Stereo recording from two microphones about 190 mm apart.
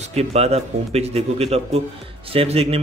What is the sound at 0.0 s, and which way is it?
Speech, 35° right (ahead or behind).